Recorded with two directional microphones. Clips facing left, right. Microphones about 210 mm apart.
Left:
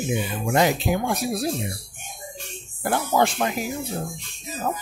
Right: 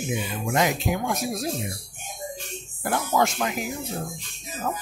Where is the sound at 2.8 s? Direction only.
30° left (ahead or behind).